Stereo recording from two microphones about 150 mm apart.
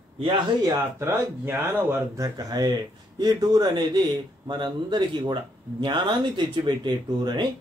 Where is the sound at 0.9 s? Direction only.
15° right (ahead or behind).